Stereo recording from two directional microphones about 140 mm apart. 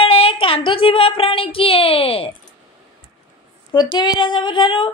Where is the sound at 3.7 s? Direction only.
30° left (ahead or behind).